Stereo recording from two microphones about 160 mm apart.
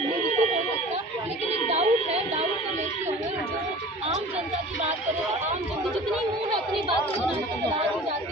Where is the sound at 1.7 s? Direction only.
40° right (ahead or behind).